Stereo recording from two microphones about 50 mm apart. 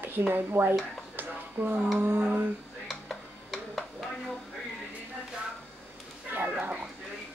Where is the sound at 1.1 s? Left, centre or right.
Right.